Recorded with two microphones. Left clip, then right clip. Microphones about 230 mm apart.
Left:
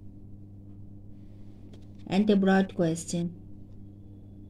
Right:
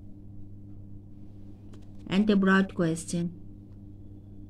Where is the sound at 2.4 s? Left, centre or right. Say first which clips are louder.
Even; centre.